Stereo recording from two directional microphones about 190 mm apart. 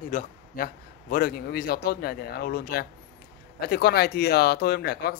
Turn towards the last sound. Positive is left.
turn(degrees=55)  # may be behind; listen again after turning